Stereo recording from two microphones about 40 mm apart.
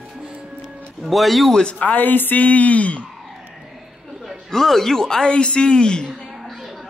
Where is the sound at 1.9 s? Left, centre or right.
Left.